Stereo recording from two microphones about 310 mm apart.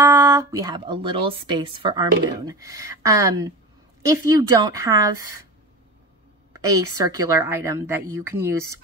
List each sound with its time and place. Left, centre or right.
0.0 s speech: centre
6.5 s speech: centre